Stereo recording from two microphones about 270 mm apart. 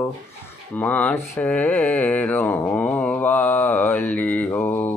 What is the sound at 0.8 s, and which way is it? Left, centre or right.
Mantra, centre.